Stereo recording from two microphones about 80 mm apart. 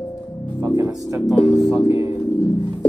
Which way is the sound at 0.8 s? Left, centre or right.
Right.